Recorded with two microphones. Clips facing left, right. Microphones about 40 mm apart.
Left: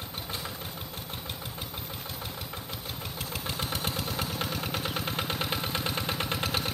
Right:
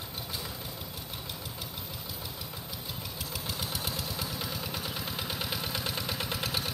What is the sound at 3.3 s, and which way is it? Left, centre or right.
Vehicle, left.